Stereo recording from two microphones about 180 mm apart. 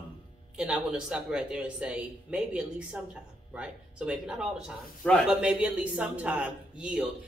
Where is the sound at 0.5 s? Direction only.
5° right (ahead or behind).